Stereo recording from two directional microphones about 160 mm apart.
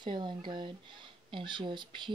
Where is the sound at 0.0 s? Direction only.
30° right (ahead or behind).